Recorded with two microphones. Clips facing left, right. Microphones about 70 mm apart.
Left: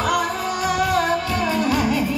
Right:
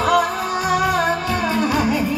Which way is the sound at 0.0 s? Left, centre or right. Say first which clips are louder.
Right 4 dB; right.